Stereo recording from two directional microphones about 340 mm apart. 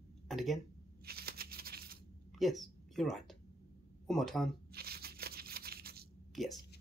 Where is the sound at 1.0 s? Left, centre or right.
Right.